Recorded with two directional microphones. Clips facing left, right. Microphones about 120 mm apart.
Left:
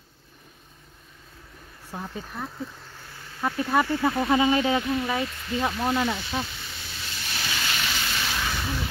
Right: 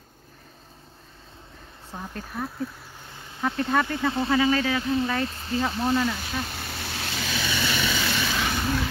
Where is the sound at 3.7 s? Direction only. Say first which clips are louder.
Left 2 dB; 10° left (ahead or behind).